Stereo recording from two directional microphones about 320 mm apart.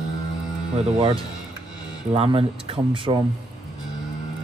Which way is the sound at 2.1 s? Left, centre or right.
Centre.